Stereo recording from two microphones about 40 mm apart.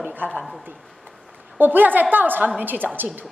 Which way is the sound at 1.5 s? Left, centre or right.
Right.